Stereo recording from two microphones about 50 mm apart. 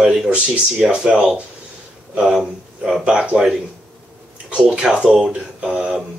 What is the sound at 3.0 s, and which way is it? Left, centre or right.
Speech, centre.